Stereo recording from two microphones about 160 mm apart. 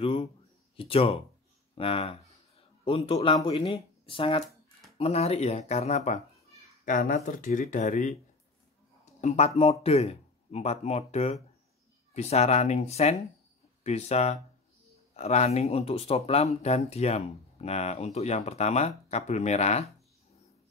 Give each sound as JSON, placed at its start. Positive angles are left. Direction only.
{"t": 0.0, "sound": "a sound", "side_deg": 35}
{"t": 0.7, "sound": "a child's voice", "side_deg": 35}
{"t": 9.2, "sound": "speech", "side_deg": 50}